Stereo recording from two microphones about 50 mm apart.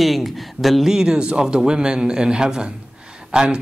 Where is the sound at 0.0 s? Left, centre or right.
Centre.